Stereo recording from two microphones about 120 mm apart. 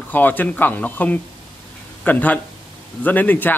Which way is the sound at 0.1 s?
15° left (ahead or behind).